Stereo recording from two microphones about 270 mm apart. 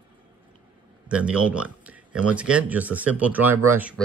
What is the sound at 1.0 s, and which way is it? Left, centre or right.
Speech, centre.